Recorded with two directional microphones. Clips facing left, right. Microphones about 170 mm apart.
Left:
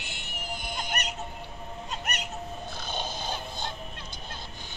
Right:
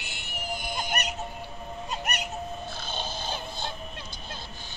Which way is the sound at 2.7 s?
15° left (ahead or behind).